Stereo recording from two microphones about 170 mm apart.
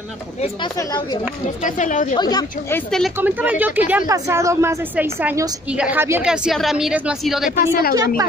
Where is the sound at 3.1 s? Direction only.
10° right (ahead or behind).